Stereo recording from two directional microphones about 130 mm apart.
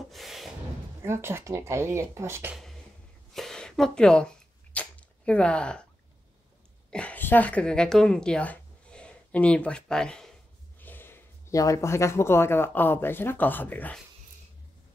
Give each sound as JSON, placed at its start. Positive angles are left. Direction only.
{"t": 0.1, "sound": "beatboxing", "side_deg": 0}
{"t": 1.0, "sound": "speech", "side_deg": -20}
{"t": 3.3, "sound": "a sound", "side_deg": 5}
{"t": 4.7, "sound": "arrow", "side_deg": 10}
{"t": 6.9, "sound": "a woman's voice", "side_deg": 10}